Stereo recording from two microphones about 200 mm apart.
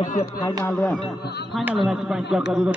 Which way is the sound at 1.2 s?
55° left (ahead or behind).